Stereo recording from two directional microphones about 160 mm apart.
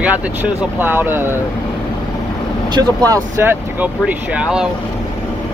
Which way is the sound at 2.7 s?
25° right (ahead or behind).